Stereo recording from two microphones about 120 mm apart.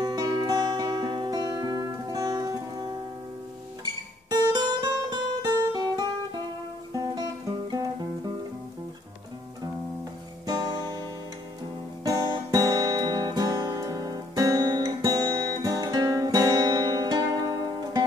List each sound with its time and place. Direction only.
0.0 s music: 35° right (ahead or behind)
4.3 s music: 35° right (ahead or behind)
10.4 s guitar: 35° right (ahead or behind)
12.0 s guitar: 30° right (ahead or behind)